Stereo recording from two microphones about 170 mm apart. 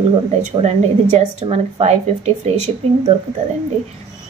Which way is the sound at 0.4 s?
40° right (ahead or behind).